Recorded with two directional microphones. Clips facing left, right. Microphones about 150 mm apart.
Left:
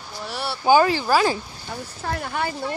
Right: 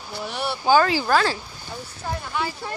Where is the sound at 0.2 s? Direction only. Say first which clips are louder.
Right 1 dB; centre (ahead or behind).